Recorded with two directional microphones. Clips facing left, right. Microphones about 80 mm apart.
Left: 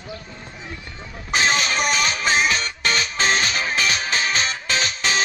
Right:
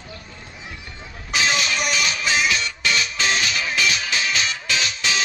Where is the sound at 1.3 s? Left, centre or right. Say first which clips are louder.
Left 2 dB; left.